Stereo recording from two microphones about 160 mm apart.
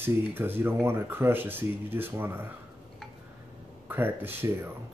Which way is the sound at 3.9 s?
15° right (ahead or behind).